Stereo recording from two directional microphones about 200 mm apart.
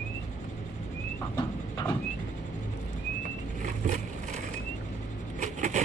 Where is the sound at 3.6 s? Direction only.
40° right (ahead or behind).